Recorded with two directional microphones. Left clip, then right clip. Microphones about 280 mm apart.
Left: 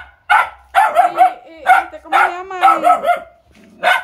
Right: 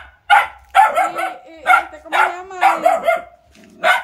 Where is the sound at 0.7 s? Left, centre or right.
Centre.